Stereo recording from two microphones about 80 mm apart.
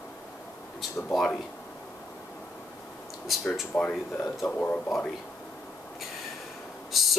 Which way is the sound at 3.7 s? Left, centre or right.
Left.